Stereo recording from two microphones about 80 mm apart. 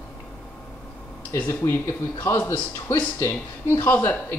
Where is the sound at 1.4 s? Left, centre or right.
Left.